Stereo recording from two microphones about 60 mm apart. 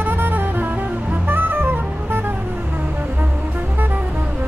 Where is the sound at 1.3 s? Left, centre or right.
Right.